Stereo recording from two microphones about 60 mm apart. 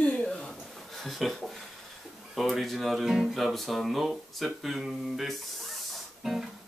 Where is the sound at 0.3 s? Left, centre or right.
Centre.